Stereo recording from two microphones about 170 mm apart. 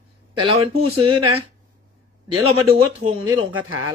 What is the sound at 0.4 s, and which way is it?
Speech, 35° right (ahead or behind).